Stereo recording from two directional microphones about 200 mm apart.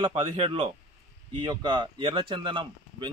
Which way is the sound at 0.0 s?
25° right (ahead or behind).